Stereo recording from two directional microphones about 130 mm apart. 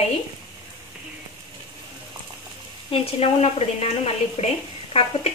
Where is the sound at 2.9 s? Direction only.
50° left (ahead or behind).